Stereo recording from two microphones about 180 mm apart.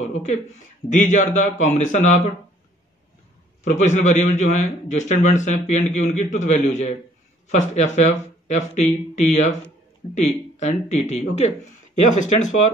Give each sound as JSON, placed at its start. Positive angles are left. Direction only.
{"t": 0.0, "sound": "a man's voice", "side_deg": 40}
{"t": 3.6, "sound": "a man's voice", "side_deg": 40}